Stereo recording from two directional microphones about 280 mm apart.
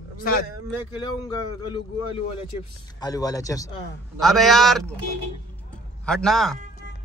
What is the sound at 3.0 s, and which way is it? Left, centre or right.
Speech, centre.